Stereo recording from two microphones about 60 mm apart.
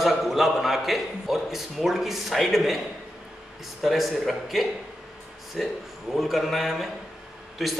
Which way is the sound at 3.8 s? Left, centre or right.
Centre.